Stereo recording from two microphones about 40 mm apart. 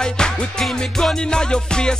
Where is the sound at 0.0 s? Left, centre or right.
Centre.